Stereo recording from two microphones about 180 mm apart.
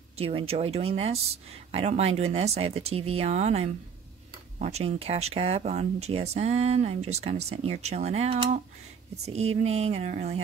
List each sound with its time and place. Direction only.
0.2 s speech: 30° right (ahead or behind)